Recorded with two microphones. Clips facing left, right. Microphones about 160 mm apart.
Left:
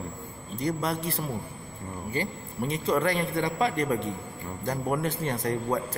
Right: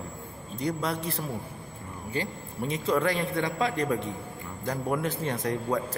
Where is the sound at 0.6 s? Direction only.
Centre (ahead or behind).